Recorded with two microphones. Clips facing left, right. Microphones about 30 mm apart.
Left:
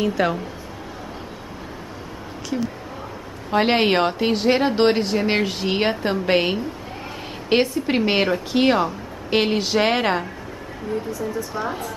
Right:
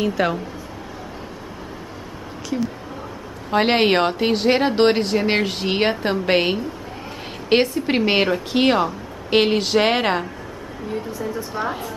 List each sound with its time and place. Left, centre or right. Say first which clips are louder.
0.0 s a woman's voice: even; centre
3.4 s a woman's voice: right 1 dB; centre
10.9 s speech: left 1 dB; right
11.5 s a woman's voice: right 1 dB; centre